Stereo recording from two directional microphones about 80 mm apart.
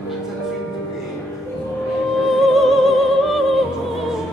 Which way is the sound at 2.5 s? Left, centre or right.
Centre.